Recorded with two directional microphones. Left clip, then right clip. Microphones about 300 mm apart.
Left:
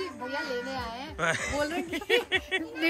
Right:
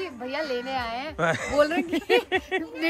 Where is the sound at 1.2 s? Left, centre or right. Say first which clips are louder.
Right 6 dB; centre.